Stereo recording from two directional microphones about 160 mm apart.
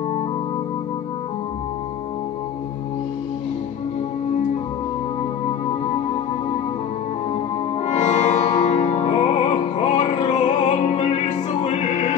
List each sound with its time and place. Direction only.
7.8 s music: 45° left (ahead or behind)